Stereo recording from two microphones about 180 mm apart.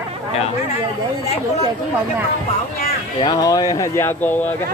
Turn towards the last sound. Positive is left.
turn(degrees=15)  # may be behind; listen again after turning